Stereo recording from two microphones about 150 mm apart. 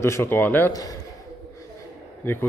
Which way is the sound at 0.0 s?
15° left (ahead or behind).